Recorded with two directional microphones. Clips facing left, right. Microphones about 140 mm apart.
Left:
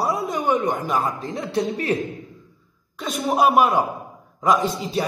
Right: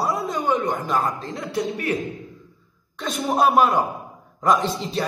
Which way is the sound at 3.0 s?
Centre (ahead or behind).